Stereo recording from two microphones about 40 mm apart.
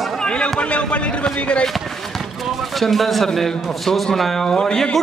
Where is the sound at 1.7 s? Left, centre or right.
Centre.